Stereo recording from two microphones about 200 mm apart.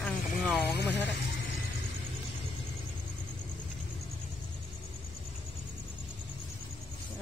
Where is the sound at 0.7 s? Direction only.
60° left (ahead or behind).